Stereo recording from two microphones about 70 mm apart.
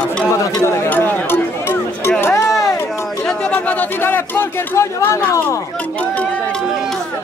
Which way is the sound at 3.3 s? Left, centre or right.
Centre.